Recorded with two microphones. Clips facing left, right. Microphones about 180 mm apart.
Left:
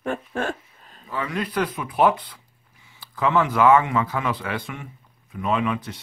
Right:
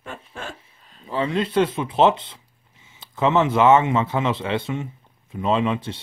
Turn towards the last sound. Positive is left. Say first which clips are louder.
# right 2 dB
turn(degrees=-25)  # may be behind; listen again after turning